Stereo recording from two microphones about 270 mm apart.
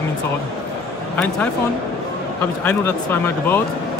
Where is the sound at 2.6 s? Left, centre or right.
Centre.